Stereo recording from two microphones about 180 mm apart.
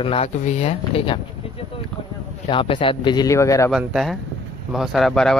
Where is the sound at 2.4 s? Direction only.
30° left (ahead or behind).